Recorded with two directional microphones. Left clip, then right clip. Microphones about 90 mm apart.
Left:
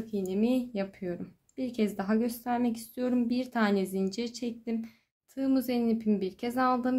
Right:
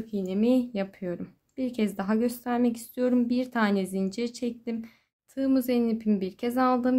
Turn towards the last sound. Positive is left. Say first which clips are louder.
# right 3 dB
turn(degrees=-45)  # may be behind; listen again after turning